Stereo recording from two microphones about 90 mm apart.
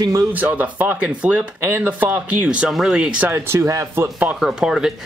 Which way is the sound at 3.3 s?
30° right (ahead or behind).